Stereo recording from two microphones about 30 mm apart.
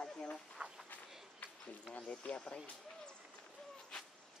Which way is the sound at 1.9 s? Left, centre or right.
Left.